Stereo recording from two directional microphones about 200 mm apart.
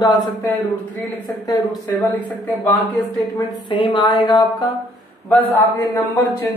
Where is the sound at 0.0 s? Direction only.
20° left (ahead or behind).